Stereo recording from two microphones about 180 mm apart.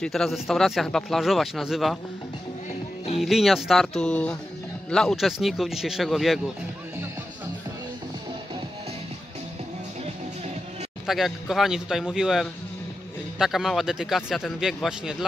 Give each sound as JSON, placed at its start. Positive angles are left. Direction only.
{"t": 0.0, "sound": "speech", "side_deg": 0}
{"t": 3.2, "sound": "speech", "side_deg": 0}
{"t": 11.1, "sound": "speech", "side_deg": 0}